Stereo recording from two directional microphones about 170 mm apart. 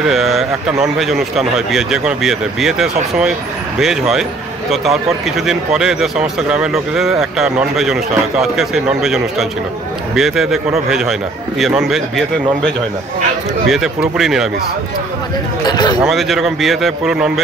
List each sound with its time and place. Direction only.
0.1 s speech: centre (ahead or behind)
13.7 s speech: centre (ahead or behind)
15.6 s speech: 25° left (ahead or behind)
16.0 s speech: centre (ahead or behind)